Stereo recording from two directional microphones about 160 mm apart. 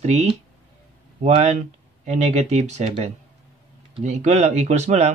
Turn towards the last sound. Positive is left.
turn(degrees=-45)  # may be behind; listen again after turning